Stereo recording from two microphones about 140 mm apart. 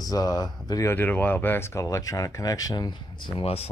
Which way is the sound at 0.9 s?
10° left (ahead or behind).